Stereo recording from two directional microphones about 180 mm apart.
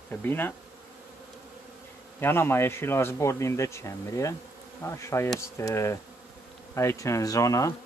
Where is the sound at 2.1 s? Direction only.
15° left (ahead or behind).